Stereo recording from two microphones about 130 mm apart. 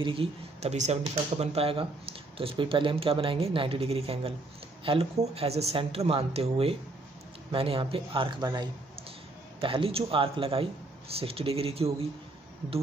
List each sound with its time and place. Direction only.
0.0 s speech: 45° right (ahead or behind)